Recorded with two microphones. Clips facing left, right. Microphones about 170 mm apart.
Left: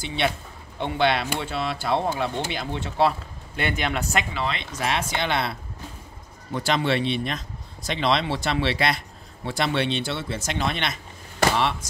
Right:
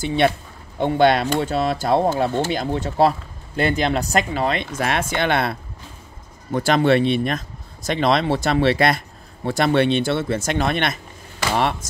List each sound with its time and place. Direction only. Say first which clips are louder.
0.0 s speech: right 7 dB; 45° right (ahead or behind)